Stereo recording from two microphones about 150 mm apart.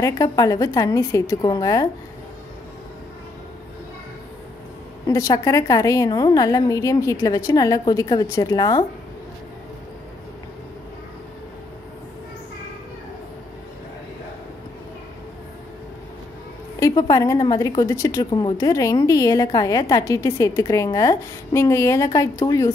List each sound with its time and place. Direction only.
0.0 s a woman's voice: 20° left (ahead or behind)
5.0 s a woman's voice: 20° left (ahead or behind)
16.8 s a woman's voice: 25° left (ahead or behind)